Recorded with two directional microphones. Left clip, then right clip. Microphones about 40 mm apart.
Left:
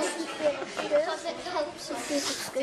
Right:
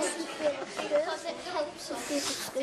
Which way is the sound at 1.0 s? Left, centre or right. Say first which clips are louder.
Left 2 dB; centre.